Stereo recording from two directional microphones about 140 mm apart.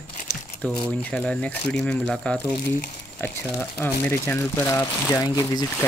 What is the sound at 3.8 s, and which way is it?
Speech, 15° left (ahead or behind).